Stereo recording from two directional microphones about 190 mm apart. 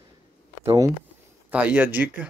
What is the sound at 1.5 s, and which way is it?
Speech, 10° right (ahead or behind).